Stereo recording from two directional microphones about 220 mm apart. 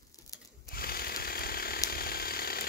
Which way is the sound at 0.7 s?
45° left (ahead or behind).